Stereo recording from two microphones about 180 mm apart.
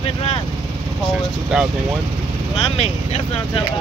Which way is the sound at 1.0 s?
5° right (ahead or behind).